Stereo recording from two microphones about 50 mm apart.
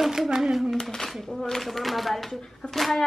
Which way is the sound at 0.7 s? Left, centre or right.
Centre.